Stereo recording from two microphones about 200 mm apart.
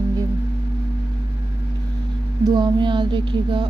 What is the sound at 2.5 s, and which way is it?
Speech, 20° right (ahead or behind).